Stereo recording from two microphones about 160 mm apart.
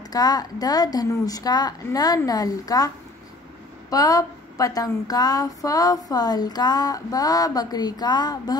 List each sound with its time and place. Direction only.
0.1 s a woman's voice: 25° left (ahead or behind)
3.9 s a woman's voice: 20° left (ahead or behind)